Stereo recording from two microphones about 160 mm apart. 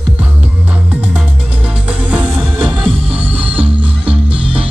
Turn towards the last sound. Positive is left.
turn(degrees=-5)  # may be behind; listen again after turning